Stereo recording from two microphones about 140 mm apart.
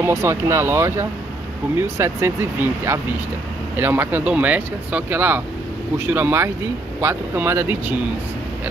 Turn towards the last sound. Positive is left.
turn(degrees=-15)  # may be behind; listen again after turning